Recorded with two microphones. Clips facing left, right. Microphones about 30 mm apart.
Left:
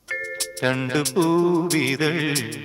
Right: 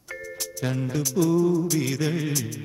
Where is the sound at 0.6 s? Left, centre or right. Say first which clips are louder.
Left 6 dB; left.